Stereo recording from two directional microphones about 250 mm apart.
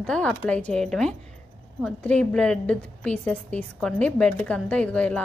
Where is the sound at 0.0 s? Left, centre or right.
Centre.